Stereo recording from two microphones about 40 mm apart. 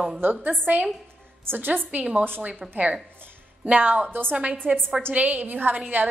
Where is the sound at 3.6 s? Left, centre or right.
Right.